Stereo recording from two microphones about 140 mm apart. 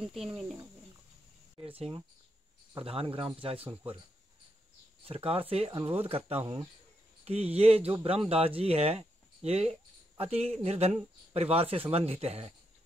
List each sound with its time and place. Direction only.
0.0 s speech: 5° right (ahead or behind)
1.7 s speech: 40° right (ahead or behind)
5.0 s speech: 45° right (ahead or behind)